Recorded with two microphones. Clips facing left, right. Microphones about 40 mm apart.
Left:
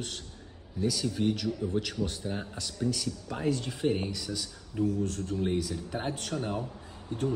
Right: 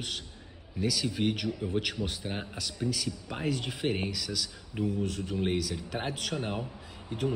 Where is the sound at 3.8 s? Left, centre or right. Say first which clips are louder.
Left 2 dB; right.